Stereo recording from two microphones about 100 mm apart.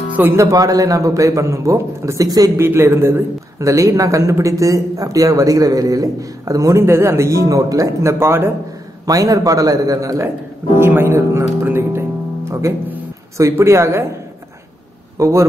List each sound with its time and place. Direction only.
0.4 s a man's voice: 35° right (ahead or behind)
2.6 s a man's voice: 25° right (ahead or behind)
9.0 s a man's voice: 35° right (ahead or behind)
10.8 s speech: 25° right (ahead or behind)
15.1 s speech: 30° right (ahead or behind)